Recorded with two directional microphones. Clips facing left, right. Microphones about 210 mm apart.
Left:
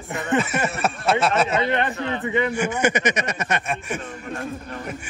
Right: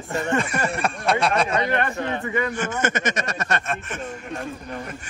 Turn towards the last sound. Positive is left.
turn(degrees=5)  # may be behind; listen again after turning